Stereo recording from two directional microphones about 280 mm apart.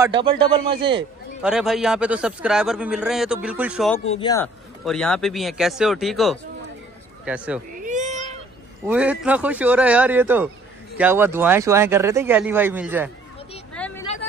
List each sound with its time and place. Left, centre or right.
0.0 s speech: centre
1.4 s a man's voice: centre
4.2 s speech: centre
4.8 s a man's voice: centre
7.7 s cat: right
8.8 s a man's voice: centre
13.7 s vehicle: centre